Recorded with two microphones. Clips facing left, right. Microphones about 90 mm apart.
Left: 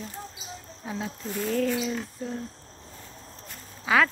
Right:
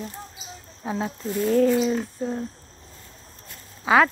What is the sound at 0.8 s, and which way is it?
Speech, 35° right (ahead or behind).